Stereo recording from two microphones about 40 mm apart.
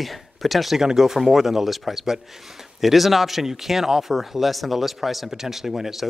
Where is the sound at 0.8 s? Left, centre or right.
Centre.